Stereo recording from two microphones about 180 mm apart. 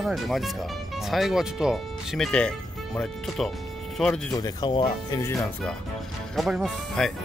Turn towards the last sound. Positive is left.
turn(degrees=0)  # may be behind; listen again after turning